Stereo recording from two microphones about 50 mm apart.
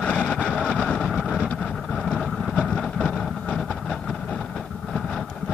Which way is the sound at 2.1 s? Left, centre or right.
Centre.